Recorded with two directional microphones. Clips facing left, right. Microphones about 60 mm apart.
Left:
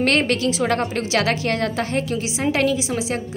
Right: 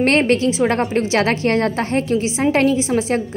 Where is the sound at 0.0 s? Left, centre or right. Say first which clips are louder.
Right 4 dB; right.